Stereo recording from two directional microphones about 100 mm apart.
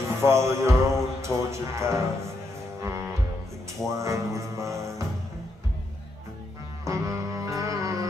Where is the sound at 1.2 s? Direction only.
30° right (ahead or behind).